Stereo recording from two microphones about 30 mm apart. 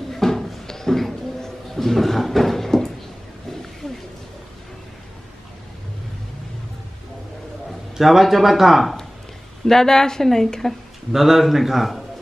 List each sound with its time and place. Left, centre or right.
0.1 s a sound: centre
1.4 s drawer open or close: centre
8.0 s speech: centre
9.7 s a woman's voice: centre
11.1 s a man's voice: centre